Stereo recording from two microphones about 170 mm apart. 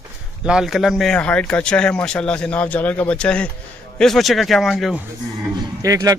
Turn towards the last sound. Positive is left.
turn(degrees=-20)  # may be behind; listen again after turning